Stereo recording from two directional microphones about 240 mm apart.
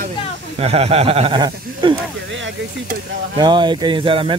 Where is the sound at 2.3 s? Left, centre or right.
Right.